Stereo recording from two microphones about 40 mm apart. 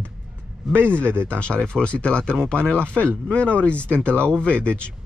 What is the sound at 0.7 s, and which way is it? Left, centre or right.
Speech, right.